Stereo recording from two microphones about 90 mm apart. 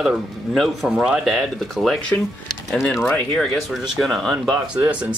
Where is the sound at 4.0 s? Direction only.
Centre (ahead or behind).